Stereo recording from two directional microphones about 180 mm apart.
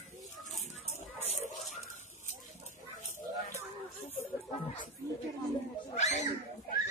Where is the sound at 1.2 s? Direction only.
40° left (ahead or behind).